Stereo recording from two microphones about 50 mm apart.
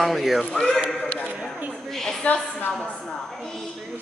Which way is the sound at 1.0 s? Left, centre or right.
Left.